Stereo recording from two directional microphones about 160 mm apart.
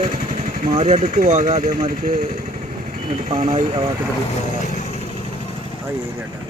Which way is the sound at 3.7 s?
30° right (ahead or behind).